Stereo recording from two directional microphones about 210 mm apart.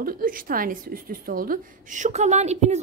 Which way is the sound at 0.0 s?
40° right (ahead or behind).